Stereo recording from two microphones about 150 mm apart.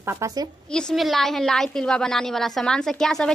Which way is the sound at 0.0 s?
20° right (ahead or behind).